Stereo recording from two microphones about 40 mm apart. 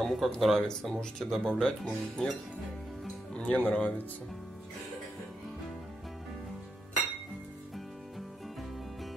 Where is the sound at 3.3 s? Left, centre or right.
Left.